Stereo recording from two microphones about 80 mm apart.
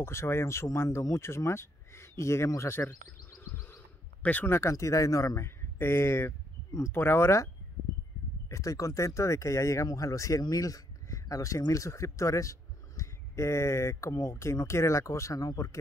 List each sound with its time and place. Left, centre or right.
0.0 s speech: left
4.2 s speech: centre
4.5 s speech: left
8.5 s speech: left